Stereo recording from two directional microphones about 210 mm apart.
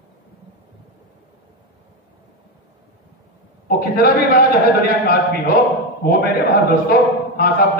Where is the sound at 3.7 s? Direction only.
45° left (ahead or behind).